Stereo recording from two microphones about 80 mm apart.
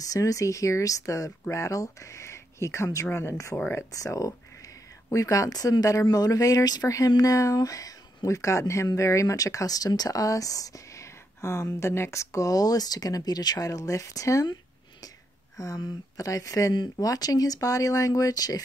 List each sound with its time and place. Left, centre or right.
0.1 s speech: left
15.5 s speech: left